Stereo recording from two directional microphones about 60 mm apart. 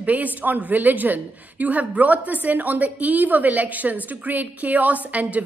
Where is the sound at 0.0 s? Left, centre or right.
Right.